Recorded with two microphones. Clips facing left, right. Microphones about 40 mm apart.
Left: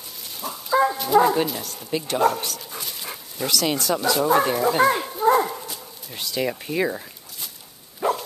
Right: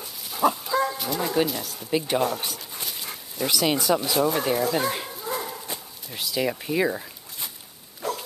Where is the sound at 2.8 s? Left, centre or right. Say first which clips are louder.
Left 1 dB; centre.